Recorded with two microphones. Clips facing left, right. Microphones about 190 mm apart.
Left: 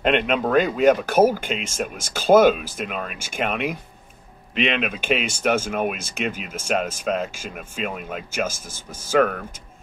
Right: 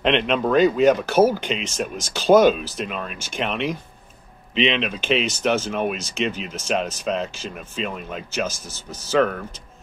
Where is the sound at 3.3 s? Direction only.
50° left (ahead or behind).